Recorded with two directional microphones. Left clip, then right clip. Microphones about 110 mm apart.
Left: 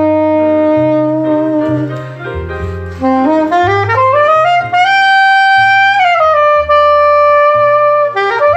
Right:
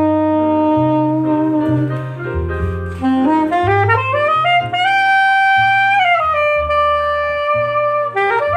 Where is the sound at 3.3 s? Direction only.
25° left (ahead or behind).